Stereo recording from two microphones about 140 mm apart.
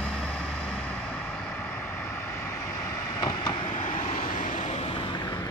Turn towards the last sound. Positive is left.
turn(degrees=30)  # may be behind; listen again after turning